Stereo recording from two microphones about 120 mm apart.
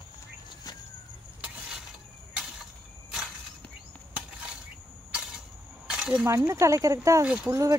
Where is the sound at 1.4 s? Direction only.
5° right (ahead or behind).